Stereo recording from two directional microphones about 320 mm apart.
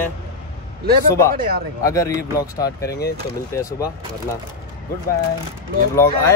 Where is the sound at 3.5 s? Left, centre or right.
Centre.